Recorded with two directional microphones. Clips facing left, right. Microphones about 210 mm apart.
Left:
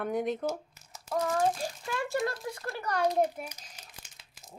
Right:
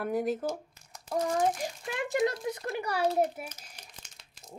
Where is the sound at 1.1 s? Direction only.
15° right (ahead or behind).